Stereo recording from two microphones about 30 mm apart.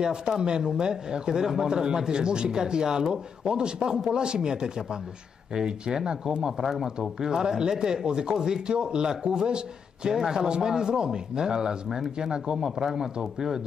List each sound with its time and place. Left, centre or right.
0.0 s speech: right
10.1 s speech: centre
12.9 s speech: centre